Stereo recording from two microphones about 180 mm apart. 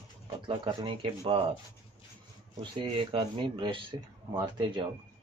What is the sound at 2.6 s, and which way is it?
Speech, 25° right (ahead or behind).